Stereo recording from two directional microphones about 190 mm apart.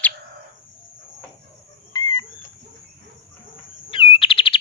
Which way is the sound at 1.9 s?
20° left (ahead or behind).